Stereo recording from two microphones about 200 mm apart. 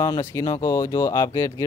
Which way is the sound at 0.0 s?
15° left (ahead or behind).